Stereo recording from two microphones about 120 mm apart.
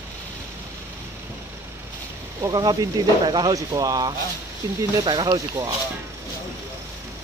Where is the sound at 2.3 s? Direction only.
35° right (ahead or behind).